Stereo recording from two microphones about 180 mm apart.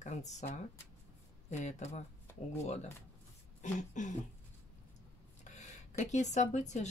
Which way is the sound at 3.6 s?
45° left (ahead or behind).